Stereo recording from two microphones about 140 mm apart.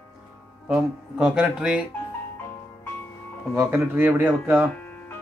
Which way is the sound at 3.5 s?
15° right (ahead or behind).